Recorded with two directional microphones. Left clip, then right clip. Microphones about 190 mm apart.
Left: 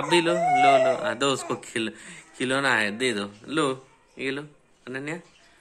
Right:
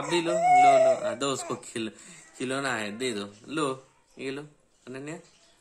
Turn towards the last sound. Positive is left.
turn(degrees=-10)  # may be behind; listen again after turning